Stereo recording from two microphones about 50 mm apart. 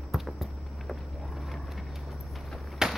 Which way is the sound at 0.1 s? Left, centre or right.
Centre.